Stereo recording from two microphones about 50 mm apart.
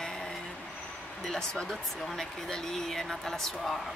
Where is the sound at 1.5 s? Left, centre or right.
Centre.